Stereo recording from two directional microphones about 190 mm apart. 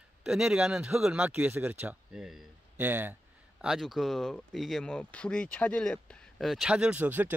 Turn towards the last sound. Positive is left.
turn(degrees=-10)  # may be behind; listen again after turning